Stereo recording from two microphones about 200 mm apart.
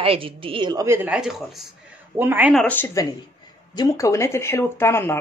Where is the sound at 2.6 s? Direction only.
10° left (ahead or behind).